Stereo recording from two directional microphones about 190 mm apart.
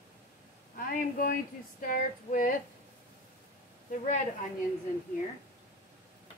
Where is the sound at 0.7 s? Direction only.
45° left (ahead or behind).